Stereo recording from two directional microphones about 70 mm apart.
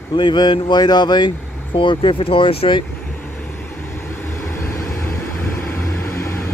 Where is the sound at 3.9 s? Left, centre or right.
Left.